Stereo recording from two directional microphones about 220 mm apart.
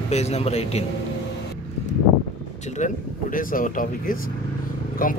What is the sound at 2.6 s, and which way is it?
Speech, 35° left (ahead or behind).